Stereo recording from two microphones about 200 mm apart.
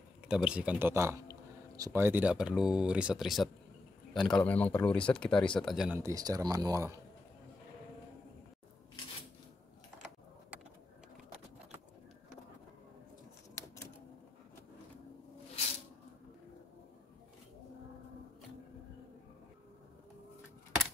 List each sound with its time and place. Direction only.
0.3 s a man's voice: 5° right (ahead or behind)
5.9 s speech: 15° right (ahead or behind)